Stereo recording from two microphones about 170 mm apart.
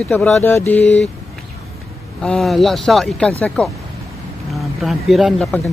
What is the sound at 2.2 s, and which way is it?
Speech, centre (ahead or behind).